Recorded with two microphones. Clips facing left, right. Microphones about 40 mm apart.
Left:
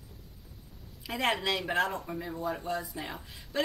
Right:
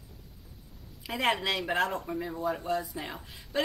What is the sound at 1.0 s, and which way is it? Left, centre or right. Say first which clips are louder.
Speech: right 1 dB; centre.